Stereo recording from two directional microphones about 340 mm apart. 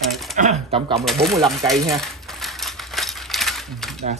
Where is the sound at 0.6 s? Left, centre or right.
Centre.